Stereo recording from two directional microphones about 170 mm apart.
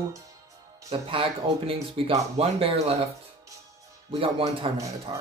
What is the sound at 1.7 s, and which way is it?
Speech, 30° right (ahead or behind).